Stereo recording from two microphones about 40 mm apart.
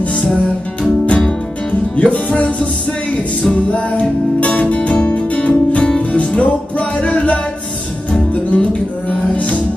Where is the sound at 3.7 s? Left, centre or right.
Left.